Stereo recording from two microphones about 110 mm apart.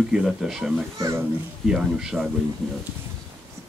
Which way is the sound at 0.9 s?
30° right (ahead or behind).